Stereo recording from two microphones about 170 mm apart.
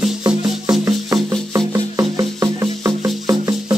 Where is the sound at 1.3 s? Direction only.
20° right (ahead or behind).